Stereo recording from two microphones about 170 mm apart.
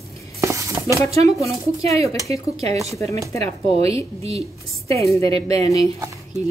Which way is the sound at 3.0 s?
20° left (ahead or behind).